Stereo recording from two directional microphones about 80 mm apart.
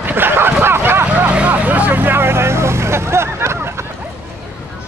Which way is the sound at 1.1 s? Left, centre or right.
Centre.